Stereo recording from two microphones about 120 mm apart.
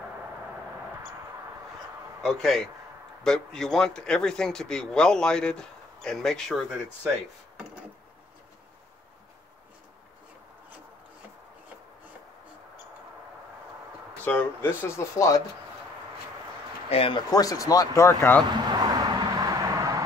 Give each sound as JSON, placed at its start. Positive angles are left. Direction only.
{"t": 2.2, "sound": "speech", "side_deg": 5}
{"t": 14.2, "sound": "speech", "side_deg": 15}
{"t": 16.9, "sound": "speech", "side_deg": 50}
{"t": 17.3, "sound": "speech", "side_deg": 30}
{"t": 18.7, "sound": "vehicle", "side_deg": -35}